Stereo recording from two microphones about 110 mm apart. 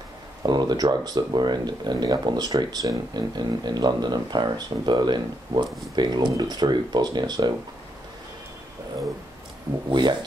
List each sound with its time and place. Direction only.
0.4 s speech: 40° right (ahead or behind)
9.8 s speech: 45° right (ahead or behind)